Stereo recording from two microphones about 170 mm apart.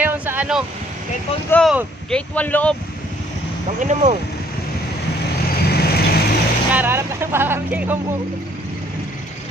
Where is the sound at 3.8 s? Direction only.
45° right (ahead or behind).